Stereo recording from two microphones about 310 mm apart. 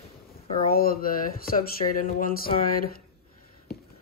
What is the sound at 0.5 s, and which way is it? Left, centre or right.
Speech, left.